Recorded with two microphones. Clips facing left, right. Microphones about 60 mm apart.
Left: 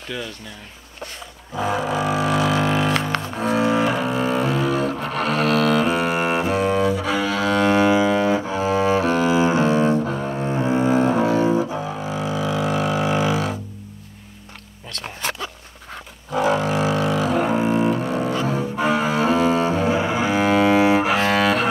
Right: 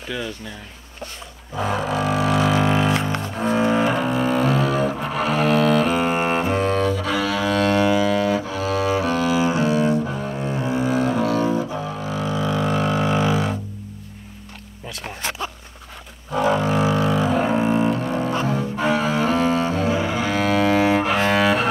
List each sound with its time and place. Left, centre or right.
1.5 s music: centre
3.3 s double bass: centre
7.5 s double bass: centre
9.9 s double bass: centre
11.4 s music: centre
16.3 s double bass: centre
17.9 s double bass: centre
18.6 s cello: centre